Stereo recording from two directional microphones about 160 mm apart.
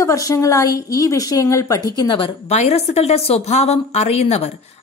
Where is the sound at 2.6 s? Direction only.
45° left (ahead or behind).